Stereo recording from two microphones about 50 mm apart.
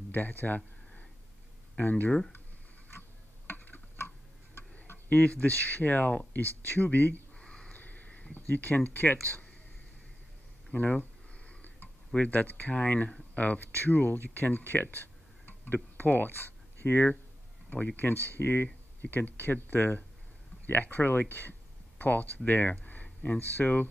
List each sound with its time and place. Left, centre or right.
0.1 s speech: left
1.8 s speech: left
3.4 s tick-tock: left
5.2 s speech: left
7.3 s a sound: centre
7.7 s crow: left
8.5 s speech: left
10.7 s a sound: left
12.2 s speech: left